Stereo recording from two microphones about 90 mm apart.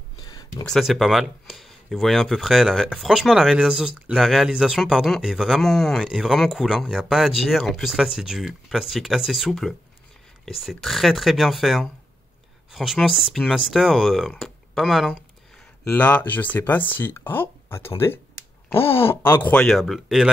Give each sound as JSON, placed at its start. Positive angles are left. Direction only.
{"t": 0.2, "sound": "a sound", "side_deg": 45}
{"t": 0.7, "sound": "speech", "side_deg": 0}
{"t": 15.8, "sound": "speech", "side_deg": 20}
{"t": 19.6, "sound": "speech", "side_deg": 0}